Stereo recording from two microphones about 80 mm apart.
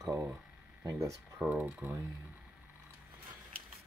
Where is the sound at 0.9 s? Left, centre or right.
Right.